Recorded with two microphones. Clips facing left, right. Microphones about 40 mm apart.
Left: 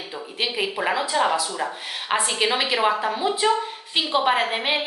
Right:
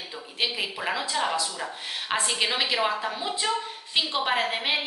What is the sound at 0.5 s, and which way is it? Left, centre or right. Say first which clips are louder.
A woman's voice: left 5 dB; centre.